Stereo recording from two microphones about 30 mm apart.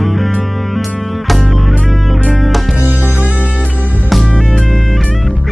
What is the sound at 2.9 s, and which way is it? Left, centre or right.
Music, right.